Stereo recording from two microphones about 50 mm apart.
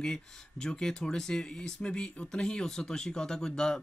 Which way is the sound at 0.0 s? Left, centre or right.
Centre.